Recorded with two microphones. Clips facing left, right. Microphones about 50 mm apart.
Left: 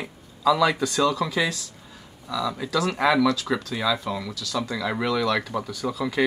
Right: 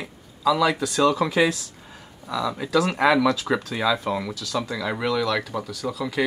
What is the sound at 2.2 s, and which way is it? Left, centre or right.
Speech, centre.